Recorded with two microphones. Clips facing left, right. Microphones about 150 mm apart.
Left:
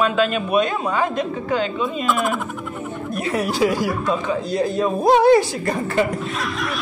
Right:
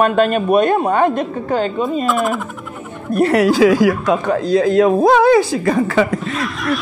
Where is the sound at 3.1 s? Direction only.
65° right (ahead or behind); by 4.9 s 90° right.